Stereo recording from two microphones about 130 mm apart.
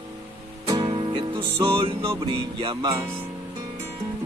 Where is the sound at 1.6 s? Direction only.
40° right (ahead or behind).